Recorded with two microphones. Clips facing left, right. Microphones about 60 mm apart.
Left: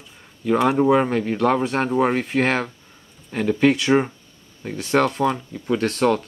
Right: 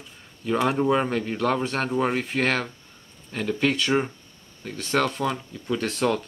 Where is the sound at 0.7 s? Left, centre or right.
Centre.